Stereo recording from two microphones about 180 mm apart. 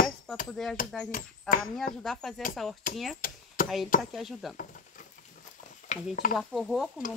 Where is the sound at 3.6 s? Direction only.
50° left (ahead or behind).